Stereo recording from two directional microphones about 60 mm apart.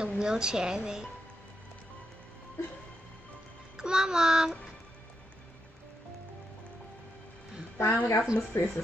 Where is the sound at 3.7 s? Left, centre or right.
Centre.